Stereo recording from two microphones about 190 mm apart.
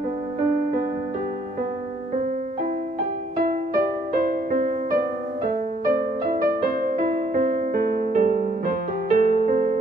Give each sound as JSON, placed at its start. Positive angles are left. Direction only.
{"t": 3.3, "sound": "music", "side_deg": -50}